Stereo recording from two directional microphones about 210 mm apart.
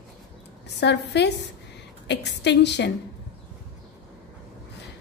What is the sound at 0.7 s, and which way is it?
A woman's voice, 55° left (ahead or behind).